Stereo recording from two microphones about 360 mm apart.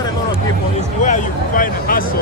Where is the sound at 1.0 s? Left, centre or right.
Left.